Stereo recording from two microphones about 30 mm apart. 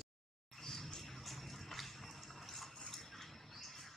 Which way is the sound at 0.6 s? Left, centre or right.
Centre.